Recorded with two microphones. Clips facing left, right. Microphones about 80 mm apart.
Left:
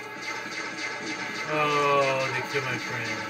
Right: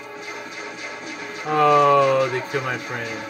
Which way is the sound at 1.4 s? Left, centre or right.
Right.